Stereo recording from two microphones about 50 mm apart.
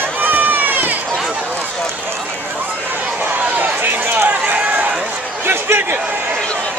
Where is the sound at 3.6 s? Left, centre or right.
Right.